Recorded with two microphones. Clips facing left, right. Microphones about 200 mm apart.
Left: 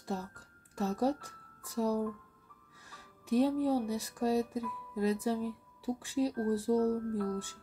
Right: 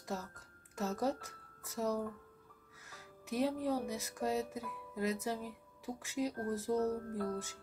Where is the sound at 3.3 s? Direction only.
35° left (ahead or behind).